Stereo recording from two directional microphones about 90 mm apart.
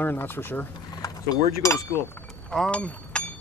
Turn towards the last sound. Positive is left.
turn(degrees=15)  # may be behind; listen again after turning